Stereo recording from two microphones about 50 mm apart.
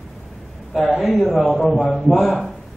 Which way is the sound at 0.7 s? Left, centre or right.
Centre.